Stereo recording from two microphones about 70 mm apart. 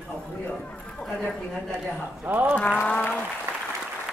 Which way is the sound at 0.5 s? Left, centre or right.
Centre.